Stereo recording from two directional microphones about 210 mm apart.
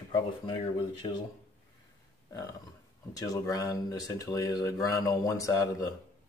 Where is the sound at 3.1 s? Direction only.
15° left (ahead or behind).